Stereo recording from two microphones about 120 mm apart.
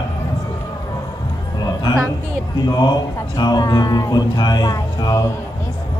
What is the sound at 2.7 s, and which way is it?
Speech, 35° left (ahead or behind).